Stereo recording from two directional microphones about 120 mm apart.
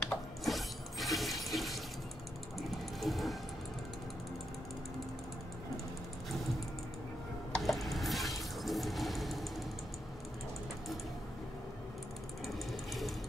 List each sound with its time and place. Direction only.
0.0 s mechanisms: centre (ahead or behind)
3.0 s music: centre (ahead or behind)
7.5 s a sound: centre (ahead or behind)